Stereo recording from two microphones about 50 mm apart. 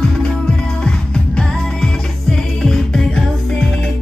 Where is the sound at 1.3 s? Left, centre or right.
Centre.